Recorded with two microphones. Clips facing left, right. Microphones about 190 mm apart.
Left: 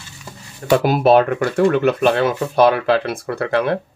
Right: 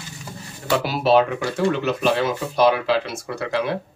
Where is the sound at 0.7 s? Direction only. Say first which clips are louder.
Left 5 dB; 50° left (ahead or behind).